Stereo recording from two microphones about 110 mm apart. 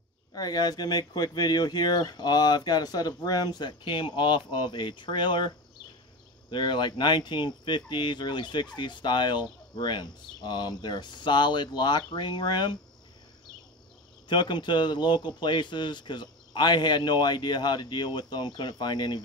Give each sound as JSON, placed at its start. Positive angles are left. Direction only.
{"t": 0.3, "sound": "speech", "side_deg": 35}
{"t": 6.5, "sound": "speech", "side_deg": 45}
{"t": 14.3, "sound": "speech", "side_deg": 45}